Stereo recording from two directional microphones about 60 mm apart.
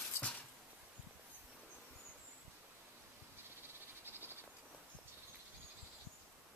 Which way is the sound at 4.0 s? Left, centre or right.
Right.